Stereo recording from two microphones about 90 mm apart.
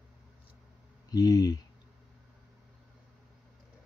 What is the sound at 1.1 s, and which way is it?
Speech, 45° left (ahead or behind).